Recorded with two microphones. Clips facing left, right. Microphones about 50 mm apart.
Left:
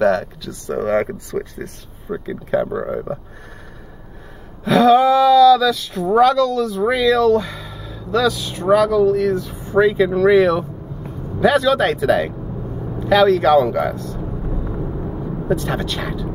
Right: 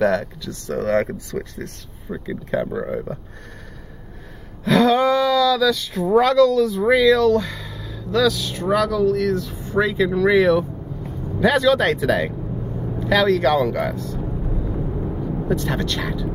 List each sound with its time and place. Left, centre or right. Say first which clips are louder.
0.0 s speech: left 3 dB; centre
0.7 s speech: left 1 dB; centre
4.6 s speech: left 4 dB; centre
15.4 s speech: left 3 dB; centre